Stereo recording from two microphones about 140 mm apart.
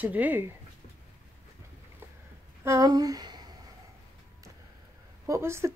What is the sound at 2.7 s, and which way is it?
Speech, 25° right (ahead or behind).